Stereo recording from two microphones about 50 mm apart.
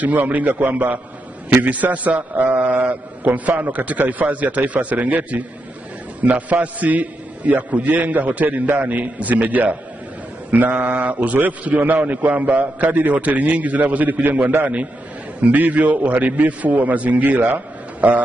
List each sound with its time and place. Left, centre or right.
0.0 s a man's voice: right
15.5 s a man's voice: right